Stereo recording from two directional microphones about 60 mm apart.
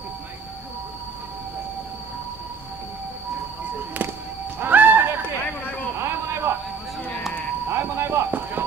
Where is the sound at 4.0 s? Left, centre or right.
Right.